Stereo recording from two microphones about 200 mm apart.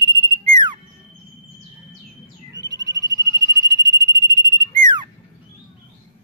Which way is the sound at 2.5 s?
20° right (ahead or behind).